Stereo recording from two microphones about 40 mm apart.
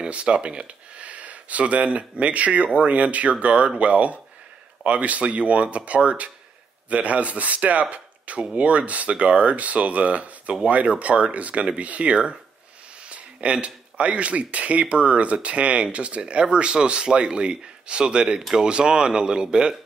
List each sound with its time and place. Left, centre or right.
0.0 s speech: right